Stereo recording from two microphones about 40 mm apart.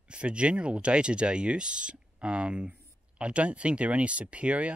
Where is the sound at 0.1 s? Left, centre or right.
Right.